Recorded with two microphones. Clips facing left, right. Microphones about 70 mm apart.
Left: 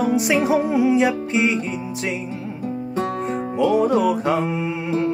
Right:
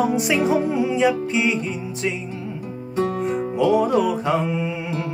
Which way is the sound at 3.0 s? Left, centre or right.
Left.